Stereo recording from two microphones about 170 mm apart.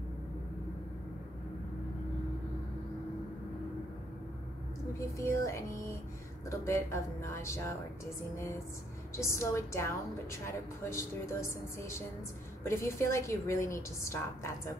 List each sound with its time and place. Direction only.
4.9 s a woman's voice: 15° left (ahead or behind)
9.1 s a woman's voice: 15° left (ahead or behind)